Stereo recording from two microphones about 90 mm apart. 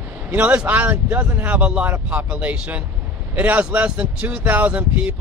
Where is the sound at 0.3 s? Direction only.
20° right (ahead or behind).